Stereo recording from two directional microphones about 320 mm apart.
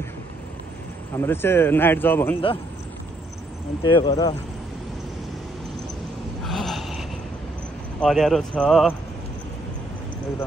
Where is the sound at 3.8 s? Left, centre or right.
Centre.